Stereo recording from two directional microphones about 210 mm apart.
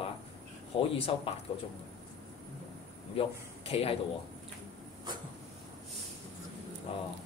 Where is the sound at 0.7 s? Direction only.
25° left (ahead or behind).